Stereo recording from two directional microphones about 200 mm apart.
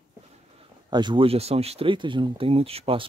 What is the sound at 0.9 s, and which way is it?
Speech, 25° right (ahead or behind).